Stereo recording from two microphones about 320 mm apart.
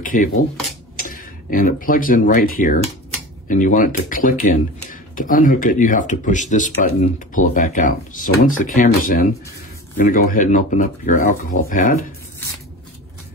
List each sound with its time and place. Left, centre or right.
0.0 s speech: left